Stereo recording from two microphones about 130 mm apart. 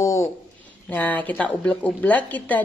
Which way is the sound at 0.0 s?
25° left (ahead or behind).